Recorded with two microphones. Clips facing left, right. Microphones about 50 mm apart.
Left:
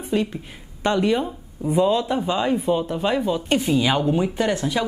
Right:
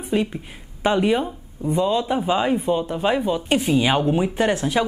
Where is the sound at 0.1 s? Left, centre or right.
Centre.